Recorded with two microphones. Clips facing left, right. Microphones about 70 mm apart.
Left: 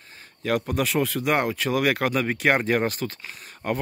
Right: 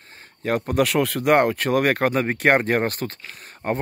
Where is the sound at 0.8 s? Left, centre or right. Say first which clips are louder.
Right 4 dB; right.